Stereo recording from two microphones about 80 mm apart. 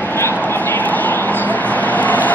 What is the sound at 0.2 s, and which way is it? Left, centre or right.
Vehicle, left.